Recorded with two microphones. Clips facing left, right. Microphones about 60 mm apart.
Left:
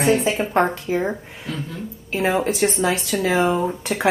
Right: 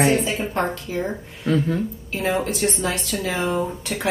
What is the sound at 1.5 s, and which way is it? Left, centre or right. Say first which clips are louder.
Speech: right 9 dB; right.